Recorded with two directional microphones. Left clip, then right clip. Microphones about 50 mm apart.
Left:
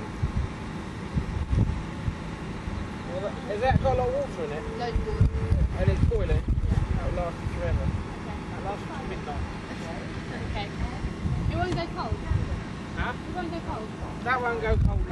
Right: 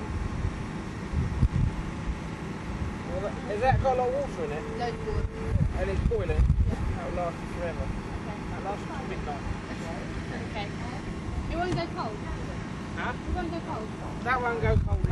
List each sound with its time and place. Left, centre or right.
3.2 s speech: right
11.5 s speech: right
14.2 s speech: right